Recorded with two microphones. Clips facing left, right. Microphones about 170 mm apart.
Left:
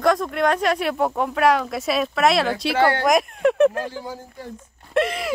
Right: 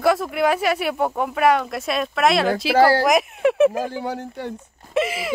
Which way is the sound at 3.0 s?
Centre (ahead or behind).